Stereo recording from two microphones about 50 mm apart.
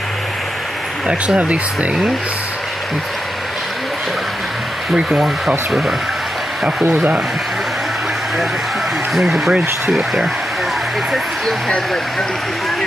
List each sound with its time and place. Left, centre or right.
1.0 s speech: right
5.7 s speech: centre
9.1 s speech: centre